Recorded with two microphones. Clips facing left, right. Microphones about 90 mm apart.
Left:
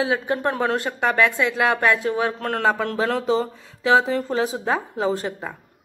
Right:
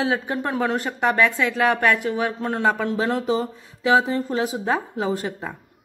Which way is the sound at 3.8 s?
25° left (ahead or behind).